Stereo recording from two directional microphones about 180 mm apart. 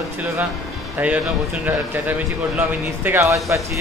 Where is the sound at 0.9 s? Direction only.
10° right (ahead or behind).